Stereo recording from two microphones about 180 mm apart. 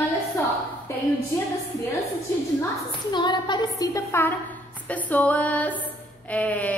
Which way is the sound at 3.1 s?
25° left (ahead or behind).